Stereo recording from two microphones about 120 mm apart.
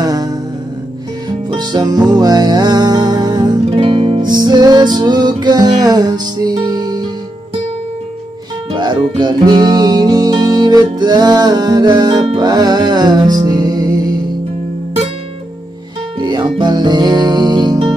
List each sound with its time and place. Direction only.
0.0 s music: 30° right (ahead or behind)
1.5 s music: 35° right (ahead or behind)
3.8 s music: 50° right (ahead or behind); by 7.1 s 35° right (ahead or behind)
8.7 s music: 40° right (ahead or behind)
16.2 s music: 40° right (ahead or behind)